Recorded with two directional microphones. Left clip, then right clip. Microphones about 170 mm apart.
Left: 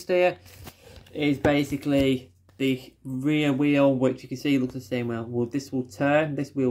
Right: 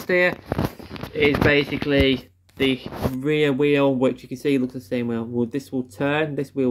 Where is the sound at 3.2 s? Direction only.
25° right (ahead or behind).